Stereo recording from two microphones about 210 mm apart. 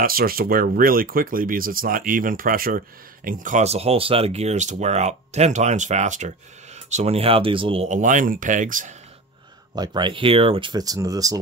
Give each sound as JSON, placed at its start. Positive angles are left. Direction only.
{"t": 0.0, "sound": "speech", "side_deg": -45}
{"t": 9.8, "sound": "speech", "side_deg": -20}